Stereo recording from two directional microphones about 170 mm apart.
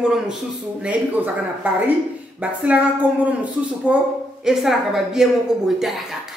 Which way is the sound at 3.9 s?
5° right (ahead or behind).